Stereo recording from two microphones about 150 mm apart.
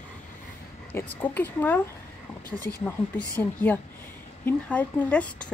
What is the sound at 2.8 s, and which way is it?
Speech, 10° left (ahead or behind).